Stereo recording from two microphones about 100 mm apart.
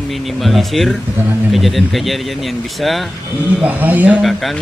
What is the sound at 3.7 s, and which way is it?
Speech, 15° right (ahead or behind).